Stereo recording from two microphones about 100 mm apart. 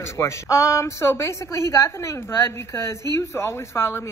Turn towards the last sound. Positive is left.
turn(degrees=25)  # may be behind; listen again after turning